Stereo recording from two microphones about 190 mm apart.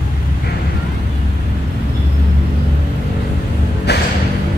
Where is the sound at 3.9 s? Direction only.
60° left (ahead or behind).